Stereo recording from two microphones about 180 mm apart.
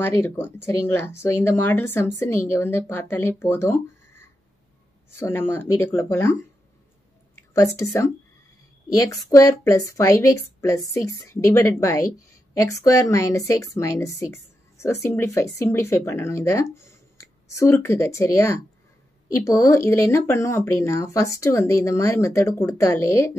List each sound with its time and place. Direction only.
0.0 s speech: 15° left (ahead or behind)
7.5 s speech: 15° left (ahead or behind)
9.3 s speech: 20° left (ahead or behind)